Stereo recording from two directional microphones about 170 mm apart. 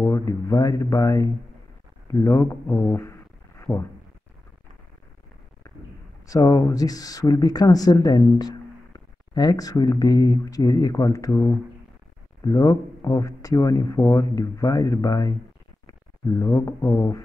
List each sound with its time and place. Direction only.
0.0 s speech: 20° left (ahead or behind)
2.7 s a sound: 10° left (ahead or behind)
6.2 s speech: 20° left (ahead or behind)
12.5 s speech: 20° left (ahead or behind)